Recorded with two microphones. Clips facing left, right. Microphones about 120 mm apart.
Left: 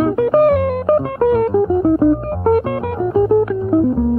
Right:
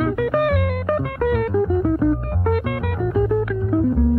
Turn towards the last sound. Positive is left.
turn(degrees=30)  # may be behind; listen again after turning